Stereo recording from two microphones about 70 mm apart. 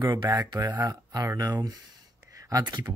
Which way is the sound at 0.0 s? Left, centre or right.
Right.